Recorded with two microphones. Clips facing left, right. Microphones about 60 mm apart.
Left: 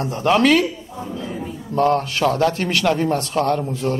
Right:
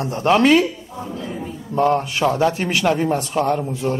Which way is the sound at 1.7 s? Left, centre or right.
Centre.